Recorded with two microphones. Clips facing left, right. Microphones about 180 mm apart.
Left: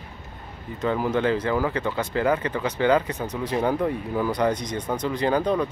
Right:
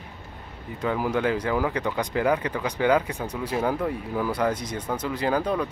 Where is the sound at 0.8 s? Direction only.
10° right (ahead or behind).